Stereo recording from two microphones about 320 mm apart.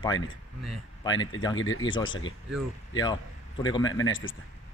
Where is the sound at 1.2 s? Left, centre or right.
Left.